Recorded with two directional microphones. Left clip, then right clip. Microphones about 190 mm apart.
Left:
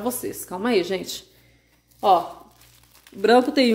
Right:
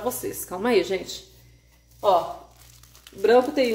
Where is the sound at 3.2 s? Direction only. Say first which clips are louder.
Left 1 dB; 30° left (ahead or behind).